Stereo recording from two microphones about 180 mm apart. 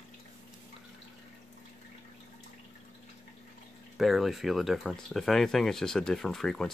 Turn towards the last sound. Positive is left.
turn(degrees=5)  # may be behind; listen again after turning